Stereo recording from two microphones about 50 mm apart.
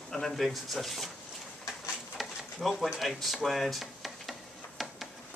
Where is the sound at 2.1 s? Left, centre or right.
Centre.